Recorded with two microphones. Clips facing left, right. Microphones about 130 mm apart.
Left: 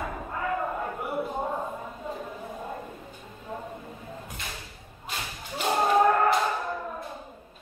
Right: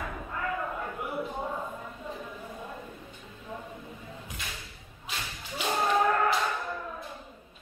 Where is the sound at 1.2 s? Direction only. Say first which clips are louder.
Left 4 dB; 40° left (ahead or behind).